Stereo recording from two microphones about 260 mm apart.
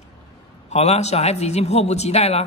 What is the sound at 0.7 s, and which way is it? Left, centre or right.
A woman's voice, left.